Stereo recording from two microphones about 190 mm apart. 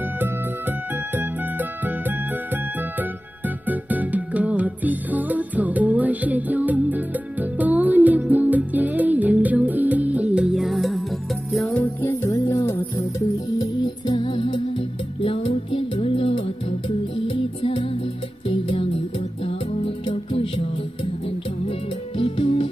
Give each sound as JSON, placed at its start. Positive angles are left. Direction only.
{"t": 0.2, "sound": "music", "side_deg": -10}